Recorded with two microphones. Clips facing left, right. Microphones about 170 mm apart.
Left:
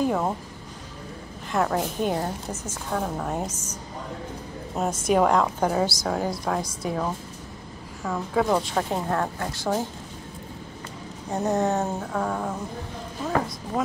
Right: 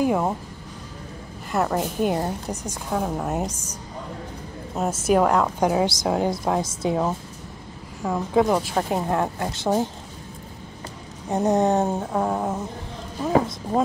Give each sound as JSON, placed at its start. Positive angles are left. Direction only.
{"t": 0.0, "sound": "a woman's voice", "side_deg": -10}
{"t": 1.5, "sound": "a woman's voice", "side_deg": -5}
{"t": 2.5, "sound": "a woman's voice", "side_deg": -15}
{"t": 4.7, "sound": "a woman's voice", "side_deg": -5}
{"t": 11.3, "sound": "a sound", "side_deg": -20}